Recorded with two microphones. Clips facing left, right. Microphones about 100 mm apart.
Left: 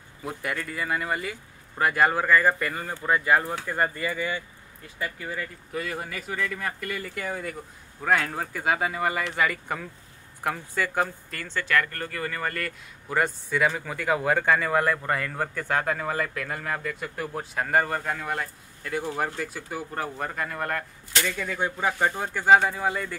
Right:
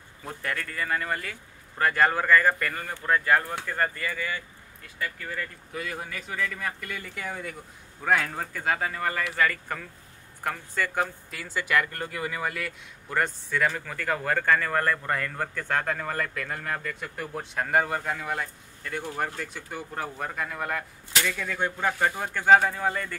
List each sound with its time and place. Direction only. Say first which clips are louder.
0.2 s speech: left 2 dB; 10° left (ahead or behind)
5.7 s speech: left 5 dB; centre (ahead or behind)
11.2 s speech: left 1 dB; 5° right (ahead or behind)
13.1 s speech: left 2 dB; 5° left (ahead or behind)